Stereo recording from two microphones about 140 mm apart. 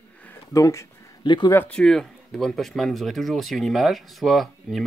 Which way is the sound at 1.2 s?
30° left (ahead or behind).